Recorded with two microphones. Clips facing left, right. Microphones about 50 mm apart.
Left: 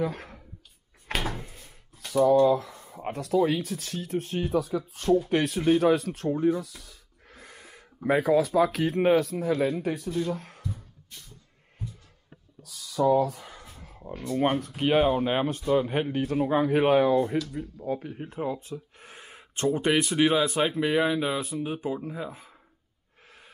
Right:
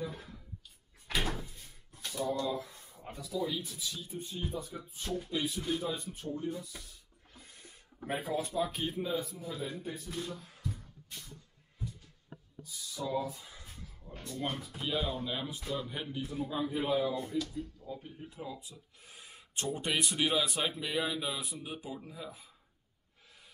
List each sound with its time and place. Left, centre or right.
0.0 s speech: left
1.2 s door: left
1.5 s drawer open or close: left
2.1 s speech: left
5.3 s speech: left
10.2 s speech: left
12.6 s a sound: left
14.8 s speech: left